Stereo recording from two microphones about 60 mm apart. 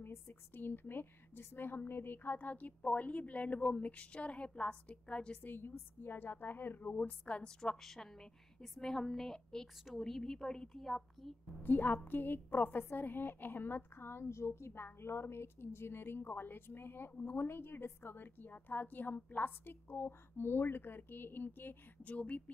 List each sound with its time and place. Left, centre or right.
0.0 s a woman's voice: left; by 5.4 s centre
5.4 s a woman's voice: left
7.0 s a woman's voice: left; by 11.3 s centre
11.6 s a woman's voice: left